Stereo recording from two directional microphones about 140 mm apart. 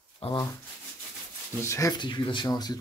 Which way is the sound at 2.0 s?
35° left (ahead or behind).